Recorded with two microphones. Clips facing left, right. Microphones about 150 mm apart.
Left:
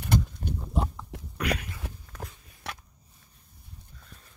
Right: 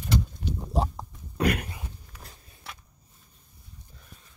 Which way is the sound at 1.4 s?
50° right (ahead or behind).